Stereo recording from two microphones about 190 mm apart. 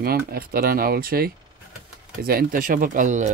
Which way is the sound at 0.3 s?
50° right (ahead or behind).